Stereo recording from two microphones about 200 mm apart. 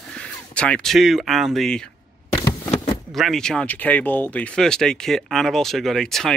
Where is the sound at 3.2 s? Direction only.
Centre (ahead or behind).